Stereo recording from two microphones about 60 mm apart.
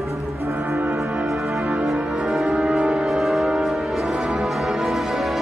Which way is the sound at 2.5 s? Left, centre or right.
Centre.